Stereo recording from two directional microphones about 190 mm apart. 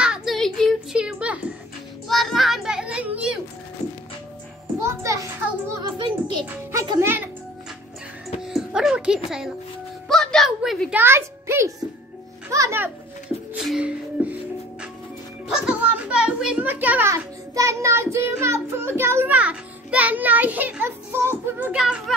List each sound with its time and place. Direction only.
0.0 s a sound: 5° right (ahead or behind)
2.0 s child singing: centre (ahead or behind)
4.8 s children playing: 15° right (ahead or behind)
5.9 s music: 25° right (ahead or behind)
6.4 s music: 15° right (ahead or behind)
8.4 s music: 5° right (ahead or behind)
10.0 s a sound: centre (ahead or behind); by 11.7 s 15° right (ahead or behind)
12.4 s music: 15° right (ahead or behind)
15.4 s a sound: 5° right (ahead or behind)